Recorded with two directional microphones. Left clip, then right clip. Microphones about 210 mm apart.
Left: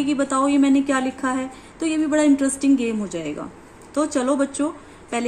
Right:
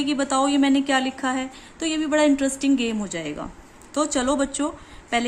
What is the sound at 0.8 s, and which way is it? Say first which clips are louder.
A woman's voice: even; 25° right (ahead or behind).